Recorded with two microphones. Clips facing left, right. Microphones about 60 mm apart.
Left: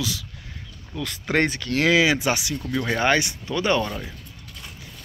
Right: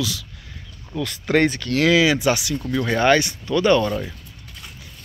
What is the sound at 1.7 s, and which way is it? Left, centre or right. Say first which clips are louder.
Speech: right 1 dB; left.